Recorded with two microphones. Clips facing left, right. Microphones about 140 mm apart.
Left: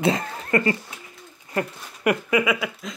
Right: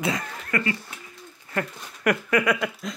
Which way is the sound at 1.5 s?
15° left (ahead or behind).